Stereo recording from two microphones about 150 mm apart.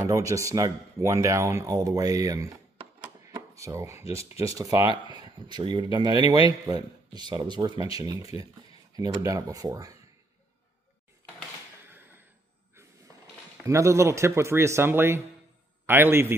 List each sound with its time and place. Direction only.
0.0 s speech: 20° right (ahead or behind)
3.3 s a sound: 20° right (ahead or behind)
4.1 s speech: 20° right (ahead or behind)
13.7 s a man's voice: 20° right (ahead or behind)